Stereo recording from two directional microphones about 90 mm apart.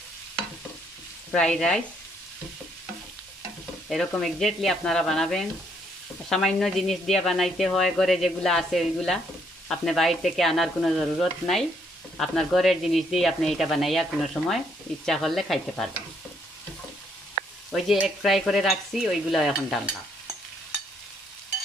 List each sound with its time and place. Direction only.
1.3 s speech: 5° left (ahead or behind)
4.2 s speech: centre (ahead or behind)
17.7 s speech: 5° right (ahead or behind)